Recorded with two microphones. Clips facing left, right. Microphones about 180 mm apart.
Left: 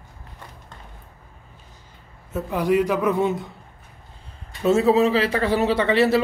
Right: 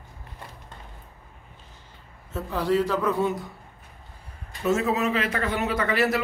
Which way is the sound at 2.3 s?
15° left (ahead or behind).